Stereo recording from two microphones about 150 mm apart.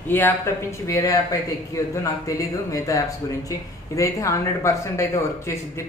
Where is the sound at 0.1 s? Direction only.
15° left (ahead or behind).